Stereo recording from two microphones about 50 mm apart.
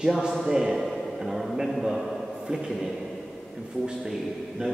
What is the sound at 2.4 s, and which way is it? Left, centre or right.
Speech, centre.